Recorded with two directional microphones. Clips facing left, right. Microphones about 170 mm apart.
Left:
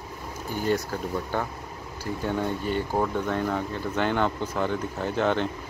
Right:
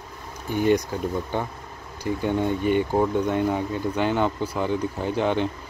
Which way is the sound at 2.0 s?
15° right (ahead or behind).